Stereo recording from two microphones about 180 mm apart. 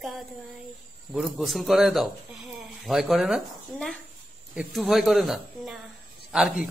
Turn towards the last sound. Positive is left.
turn(degrees=0)  # may be behind; listen again after turning